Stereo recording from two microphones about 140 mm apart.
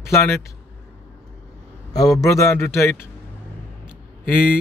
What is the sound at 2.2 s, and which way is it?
Speech, 20° left (ahead or behind).